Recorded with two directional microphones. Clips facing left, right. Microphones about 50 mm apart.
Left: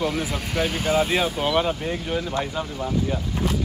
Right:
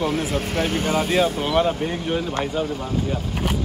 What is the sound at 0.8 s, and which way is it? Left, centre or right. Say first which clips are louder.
Speech: right 1 dB; centre.